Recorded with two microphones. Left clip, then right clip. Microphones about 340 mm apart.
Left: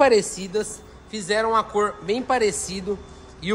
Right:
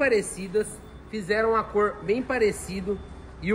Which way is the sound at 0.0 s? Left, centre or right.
Left.